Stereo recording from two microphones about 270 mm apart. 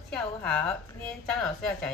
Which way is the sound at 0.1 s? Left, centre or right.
Centre.